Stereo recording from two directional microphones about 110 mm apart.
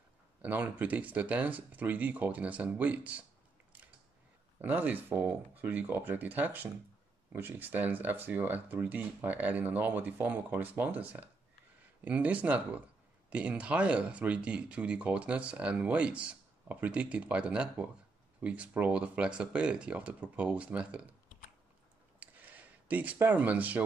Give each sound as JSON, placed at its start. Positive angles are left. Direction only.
{"t": 0.4, "sound": "speech", "side_deg": -15}
{"t": 4.6, "sound": "speech", "side_deg": -15}
{"t": 22.2, "sound": "a sound", "side_deg": -15}